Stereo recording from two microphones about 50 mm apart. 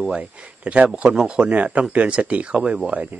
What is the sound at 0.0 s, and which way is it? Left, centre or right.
Speech, right.